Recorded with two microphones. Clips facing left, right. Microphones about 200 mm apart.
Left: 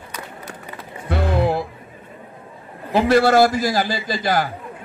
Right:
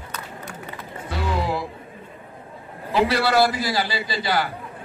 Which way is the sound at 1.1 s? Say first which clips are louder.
Left 6 dB; 55° left (ahead or behind).